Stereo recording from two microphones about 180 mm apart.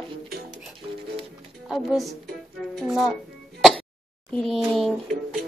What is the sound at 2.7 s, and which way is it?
Music, centre (ahead or behind).